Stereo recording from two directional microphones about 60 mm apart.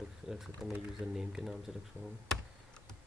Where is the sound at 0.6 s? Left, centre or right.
Centre.